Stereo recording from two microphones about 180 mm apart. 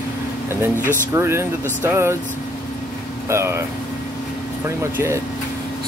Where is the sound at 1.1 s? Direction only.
15° right (ahead or behind).